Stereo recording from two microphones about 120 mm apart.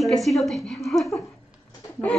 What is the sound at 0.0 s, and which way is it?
A woman's voice, centre (ahead or behind).